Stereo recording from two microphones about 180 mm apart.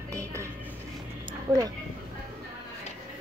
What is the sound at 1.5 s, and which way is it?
Speech, 25° right (ahead or behind).